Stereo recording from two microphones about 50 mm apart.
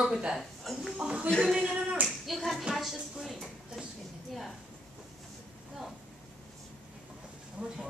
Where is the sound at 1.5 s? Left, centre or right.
Centre.